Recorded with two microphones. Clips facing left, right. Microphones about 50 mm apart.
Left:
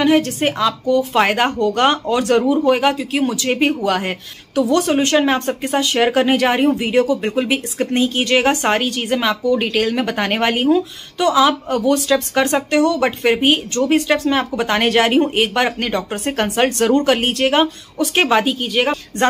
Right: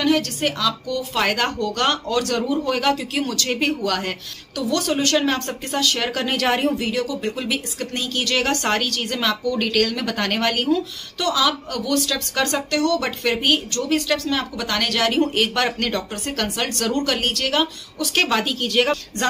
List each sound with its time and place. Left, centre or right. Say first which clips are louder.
0.0 s speech: left 5 dB; left
3.0 s a woman's voice: left 5 dB; centre
3.3 s speech: left 6 dB; left
6.3 s a woman's voice: left 5 dB; centre
6.7 s speech: left 7 dB; left
18.2 s a woman's voice: left 5 dB; centre